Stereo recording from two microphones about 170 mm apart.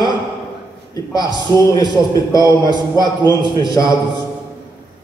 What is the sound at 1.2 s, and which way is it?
Speech, 20° left (ahead or behind).